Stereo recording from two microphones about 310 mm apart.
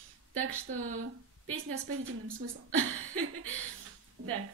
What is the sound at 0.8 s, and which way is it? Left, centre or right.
Speech, right.